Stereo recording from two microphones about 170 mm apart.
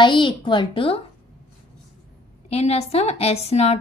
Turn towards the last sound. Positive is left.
turn(degrees=40)  # may be behind; listen again after turning